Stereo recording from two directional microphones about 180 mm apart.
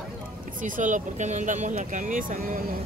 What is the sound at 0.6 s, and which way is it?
Speech, 45° right (ahead or behind).